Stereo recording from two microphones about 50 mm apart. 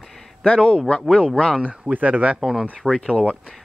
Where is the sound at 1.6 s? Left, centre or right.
Right.